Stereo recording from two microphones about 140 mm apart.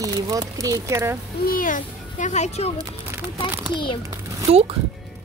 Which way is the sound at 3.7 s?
35° left (ahead or behind).